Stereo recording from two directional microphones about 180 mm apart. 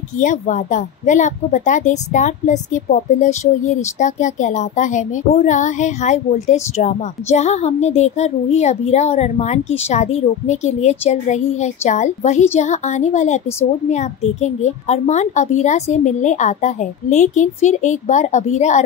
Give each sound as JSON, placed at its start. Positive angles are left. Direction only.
{"t": 0.2, "sound": "speech", "side_deg": 45}